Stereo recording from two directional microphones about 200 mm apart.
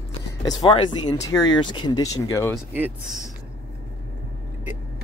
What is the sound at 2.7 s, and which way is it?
Speech, 10° right (ahead or behind).